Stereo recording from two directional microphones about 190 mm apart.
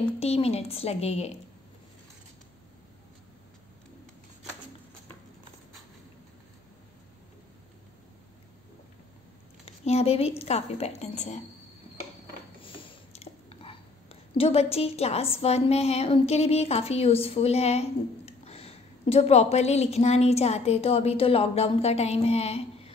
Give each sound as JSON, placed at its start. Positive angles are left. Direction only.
{"t": 0.2, "sound": "a woman's voice", "side_deg": 35}
{"t": 9.7, "sound": "a woman's voice", "side_deg": 35}
{"t": 12.6, "sound": "a sound", "side_deg": 25}
{"t": 14.3, "sound": "a woman's voice", "side_deg": 30}